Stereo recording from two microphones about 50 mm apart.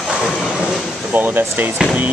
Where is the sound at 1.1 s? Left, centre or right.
Right.